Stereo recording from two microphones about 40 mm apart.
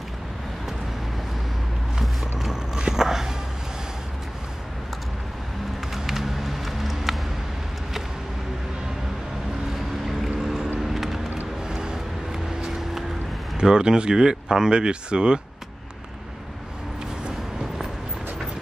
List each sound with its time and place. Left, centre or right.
2.0 s music: centre
5.9 s run: centre
10.0 s vehicle: centre
11.6 s vehicle: centre
13.6 s speech: centre